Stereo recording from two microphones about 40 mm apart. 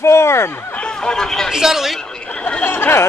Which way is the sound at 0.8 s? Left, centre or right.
Centre.